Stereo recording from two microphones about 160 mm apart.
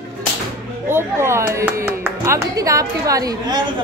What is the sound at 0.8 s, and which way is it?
Speech, 15° right (ahead or behind).